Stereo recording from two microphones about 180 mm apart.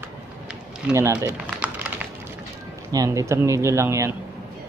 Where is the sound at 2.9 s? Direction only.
20° right (ahead or behind).